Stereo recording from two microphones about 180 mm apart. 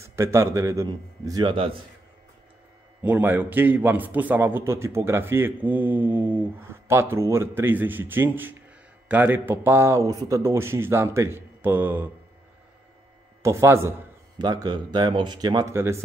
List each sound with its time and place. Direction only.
0.0 s a man's voice: 15° right (ahead or behind)
3.0 s a man's voice: 10° right (ahead or behind)
13.4 s a man's voice: 15° right (ahead or behind)